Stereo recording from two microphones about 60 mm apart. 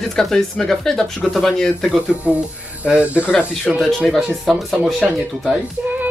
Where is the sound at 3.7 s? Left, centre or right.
Centre.